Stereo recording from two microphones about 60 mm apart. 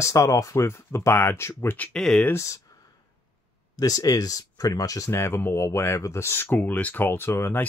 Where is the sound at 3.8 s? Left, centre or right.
Left.